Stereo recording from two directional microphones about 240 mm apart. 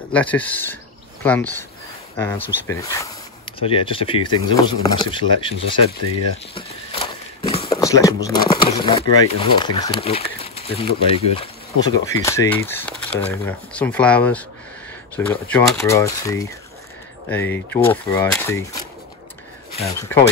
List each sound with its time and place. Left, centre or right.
0.1 s speech: centre
6.3 s walk: left
8.6 s speech: left
19.9 s speech: centre